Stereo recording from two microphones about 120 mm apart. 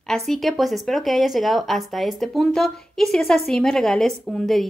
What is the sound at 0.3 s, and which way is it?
Speech, centre (ahead or behind).